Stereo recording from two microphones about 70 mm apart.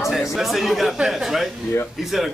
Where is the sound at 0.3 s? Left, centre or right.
Centre.